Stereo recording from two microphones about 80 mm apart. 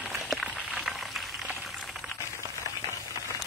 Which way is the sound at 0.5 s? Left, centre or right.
Centre.